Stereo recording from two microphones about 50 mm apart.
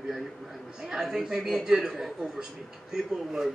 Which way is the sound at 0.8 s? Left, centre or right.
Centre.